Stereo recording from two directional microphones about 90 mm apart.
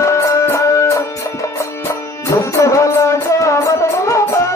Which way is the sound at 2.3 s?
35° left (ahead or behind).